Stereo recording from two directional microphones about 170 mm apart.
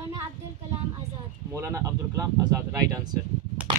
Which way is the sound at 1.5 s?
20° right (ahead or behind).